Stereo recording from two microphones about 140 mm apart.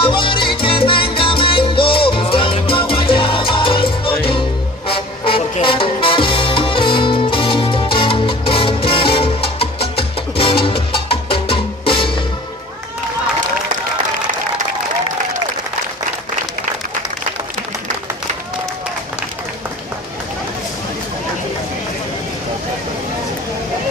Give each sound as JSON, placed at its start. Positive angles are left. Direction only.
{"t": 0.0, "sound": "music", "side_deg": 35}